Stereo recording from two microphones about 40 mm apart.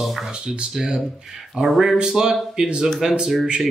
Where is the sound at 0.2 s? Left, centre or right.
Centre.